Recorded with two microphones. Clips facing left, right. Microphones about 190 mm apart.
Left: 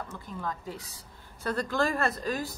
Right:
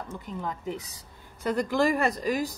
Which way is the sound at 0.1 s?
20° right (ahead or behind).